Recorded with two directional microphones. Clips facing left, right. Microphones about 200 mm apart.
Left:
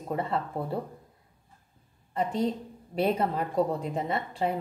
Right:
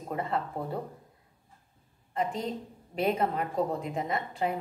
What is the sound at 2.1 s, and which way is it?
A woman's voice, 35° left (ahead or behind).